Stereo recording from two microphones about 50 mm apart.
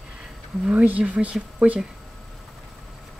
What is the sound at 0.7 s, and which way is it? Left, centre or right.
Speech, right.